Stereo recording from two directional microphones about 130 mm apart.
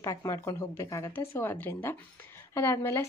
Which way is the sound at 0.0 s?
25° left (ahead or behind).